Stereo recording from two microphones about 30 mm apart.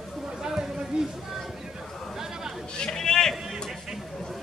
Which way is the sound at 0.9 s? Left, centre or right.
Right.